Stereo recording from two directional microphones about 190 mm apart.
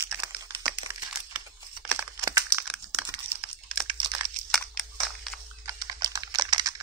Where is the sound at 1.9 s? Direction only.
15° right (ahead or behind).